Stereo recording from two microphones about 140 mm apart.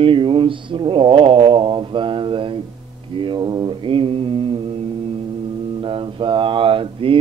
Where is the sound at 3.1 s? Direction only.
35° right (ahead or behind).